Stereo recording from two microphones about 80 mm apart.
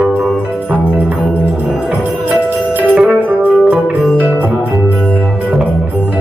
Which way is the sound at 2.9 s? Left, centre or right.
Centre.